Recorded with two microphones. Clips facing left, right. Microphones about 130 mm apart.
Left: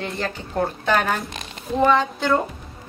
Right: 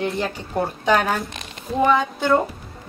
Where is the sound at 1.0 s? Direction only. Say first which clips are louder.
Right 1 dB; centre (ahead or behind).